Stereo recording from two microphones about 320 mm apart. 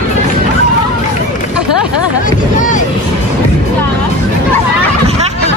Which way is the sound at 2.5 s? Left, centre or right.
Left.